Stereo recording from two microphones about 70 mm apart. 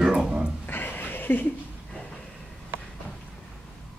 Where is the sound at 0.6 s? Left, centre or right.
Left.